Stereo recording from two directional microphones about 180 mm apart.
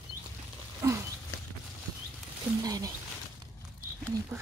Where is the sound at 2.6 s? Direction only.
20° right (ahead or behind).